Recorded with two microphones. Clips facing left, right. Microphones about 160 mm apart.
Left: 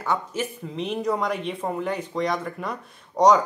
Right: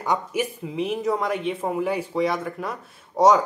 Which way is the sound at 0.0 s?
15° right (ahead or behind).